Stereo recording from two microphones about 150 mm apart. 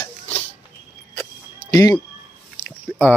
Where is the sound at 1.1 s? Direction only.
20° left (ahead or behind).